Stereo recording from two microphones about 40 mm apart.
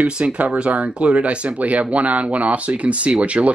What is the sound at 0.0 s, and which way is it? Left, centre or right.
Speech, right.